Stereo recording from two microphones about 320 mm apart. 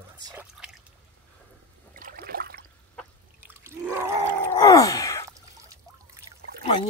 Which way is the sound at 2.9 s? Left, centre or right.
Centre.